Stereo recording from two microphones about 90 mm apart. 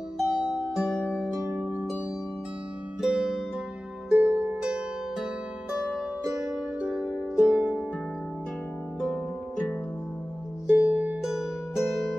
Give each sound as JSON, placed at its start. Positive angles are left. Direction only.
{"t": 0.2, "sound": "music", "side_deg": -5}
{"t": 3.0, "sound": "music", "side_deg": -5}
{"t": 4.1, "sound": "harp", "side_deg": -15}
{"t": 5.7, "sound": "music", "side_deg": -10}
{"t": 7.3, "sound": "harp", "side_deg": -15}
{"t": 10.8, "sound": "music", "side_deg": -15}
{"t": 11.2, "sound": "music", "side_deg": -5}